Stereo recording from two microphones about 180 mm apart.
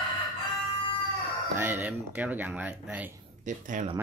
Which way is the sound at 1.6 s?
10° right (ahead or behind).